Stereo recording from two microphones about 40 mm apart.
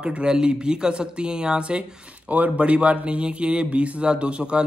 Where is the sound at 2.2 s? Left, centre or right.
Right.